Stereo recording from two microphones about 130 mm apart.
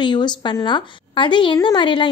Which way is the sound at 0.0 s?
35° left (ahead or behind).